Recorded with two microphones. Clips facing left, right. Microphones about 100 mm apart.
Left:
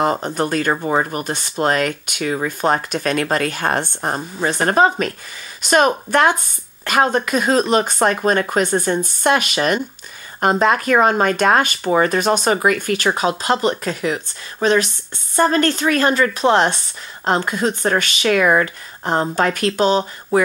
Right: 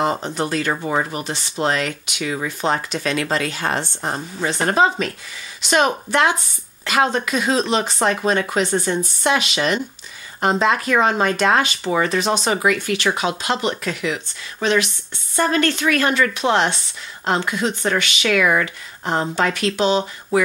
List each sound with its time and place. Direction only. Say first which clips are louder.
0.2 s a woman's voice: left 3 dB; 50° left (ahead or behind)